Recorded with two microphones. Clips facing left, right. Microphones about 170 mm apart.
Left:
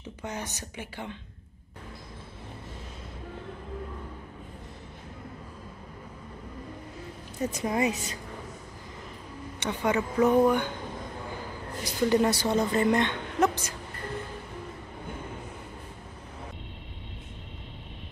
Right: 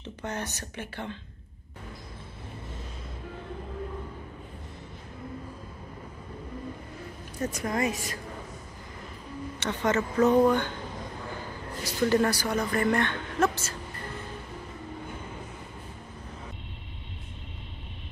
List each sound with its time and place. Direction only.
0.2 s a woman's voice: 10° left (ahead or behind)
7.4 s speech: 20° left (ahead or behind)
9.6 s a woman's voice: 10° left (ahead or behind)
11.8 s a woman's voice: 15° left (ahead or behind)